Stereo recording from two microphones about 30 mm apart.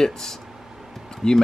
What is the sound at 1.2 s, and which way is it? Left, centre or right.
Speech, left.